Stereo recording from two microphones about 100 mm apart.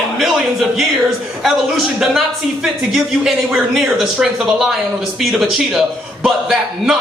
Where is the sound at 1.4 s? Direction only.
5° right (ahead or behind).